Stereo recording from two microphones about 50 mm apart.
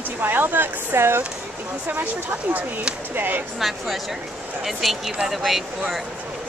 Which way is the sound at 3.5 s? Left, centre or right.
Centre.